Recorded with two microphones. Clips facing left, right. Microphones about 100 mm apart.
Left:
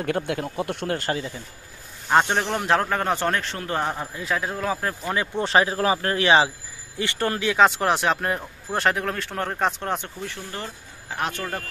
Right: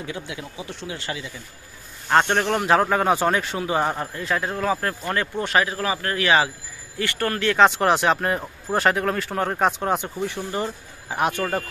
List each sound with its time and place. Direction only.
0.0 s speech: 55° left (ahead or behind)
2.0 s speech: 5° left (ahead or behind)
5.4 s speech: 30° left (ahead or behind); by 7.6 s 10° left (ahead or behind)
7.6 s speech: centre (ahead or behind); by 11.6 s 15° right (ahead or behind)